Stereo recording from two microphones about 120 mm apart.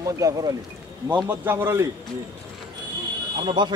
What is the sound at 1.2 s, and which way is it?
Speech, 20° right (ahead or behind).